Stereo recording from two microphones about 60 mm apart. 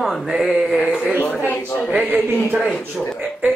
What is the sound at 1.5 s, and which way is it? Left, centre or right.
Speech, left.